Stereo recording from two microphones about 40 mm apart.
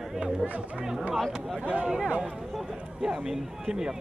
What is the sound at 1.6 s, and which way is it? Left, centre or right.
Speech, right.